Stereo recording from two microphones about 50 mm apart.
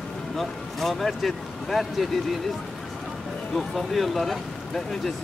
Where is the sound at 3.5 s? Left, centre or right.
Centre.